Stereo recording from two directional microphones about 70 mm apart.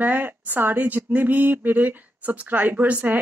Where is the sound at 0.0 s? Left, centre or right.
Right.